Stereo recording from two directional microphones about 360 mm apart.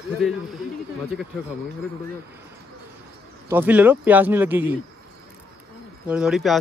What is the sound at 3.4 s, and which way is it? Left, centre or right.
Speech, centre.